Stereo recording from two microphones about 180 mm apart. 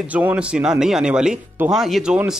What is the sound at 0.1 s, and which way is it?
A man's voice, 10° right (ahead or behind).